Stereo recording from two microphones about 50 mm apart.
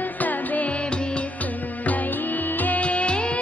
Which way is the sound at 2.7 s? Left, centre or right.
Left.